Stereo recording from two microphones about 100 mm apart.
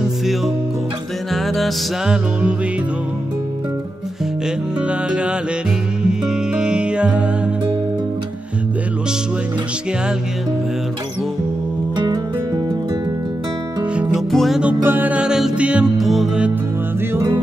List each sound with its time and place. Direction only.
1.3 s music: centre (ahead or behind)
4.8 s music: 10° right (ahead or behind)
12.0 s music: 45° right (ahead or behind)
14.3 s music: centre (ahead or behind)
14.6 s music: 15° right (ahead or behind)